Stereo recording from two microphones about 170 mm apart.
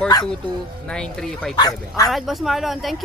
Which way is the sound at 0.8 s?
5° left (ahead or behind).